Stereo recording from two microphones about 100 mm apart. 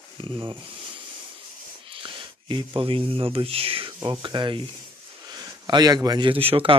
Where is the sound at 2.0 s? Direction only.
55° right (ahead or behind); by 3.9 s 70° right (ahead or behind).